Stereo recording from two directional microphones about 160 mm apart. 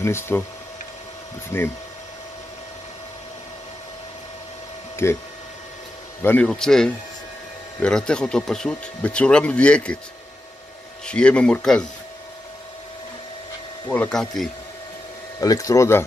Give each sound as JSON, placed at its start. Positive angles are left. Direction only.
{"t": 0.0, "sound": "speech", "side_deg": 15}
{"t": 1.5, "sound": "speech", "side_deg": 15}
{"t": 5.0, "sound": "speech", "side_deg": 15}
{"t": 6.2, "sound": "speech", "side_deg": 10}
{"t": 11.1, "sound": "speech", "side_deg": 5}
{"t": 13.8, "sound": "speech", "side_deg": 10}
{"t": 15.4, "sound": "speech", "side_deg": 20}